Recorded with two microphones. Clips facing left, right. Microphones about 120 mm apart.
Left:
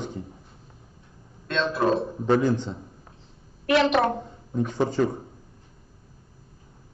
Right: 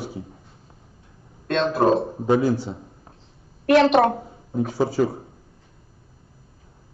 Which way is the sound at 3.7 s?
40° right (ahead or behind).